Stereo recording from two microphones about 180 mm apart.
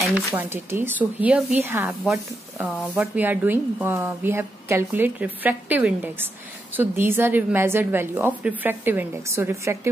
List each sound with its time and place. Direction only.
0.3 s speech: 15° right (ahead or behind)